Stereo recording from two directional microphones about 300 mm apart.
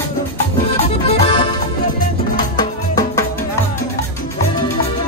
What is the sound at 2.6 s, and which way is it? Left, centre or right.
Music, centre.